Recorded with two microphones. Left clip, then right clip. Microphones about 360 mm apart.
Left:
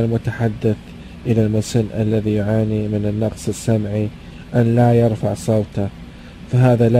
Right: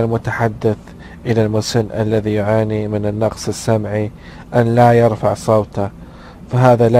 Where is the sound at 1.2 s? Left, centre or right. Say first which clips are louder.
Right 3 dB; right.